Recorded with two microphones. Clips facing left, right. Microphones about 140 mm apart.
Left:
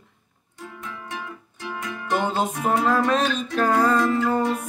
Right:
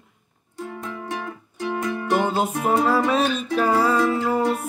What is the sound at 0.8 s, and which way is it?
Music, 40° right (ahead or behind).